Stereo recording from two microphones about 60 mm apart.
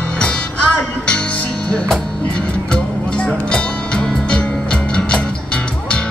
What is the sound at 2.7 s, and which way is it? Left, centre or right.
Music, centre.